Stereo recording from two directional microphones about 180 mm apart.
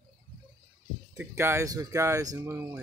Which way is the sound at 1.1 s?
15° right (ahead or behind).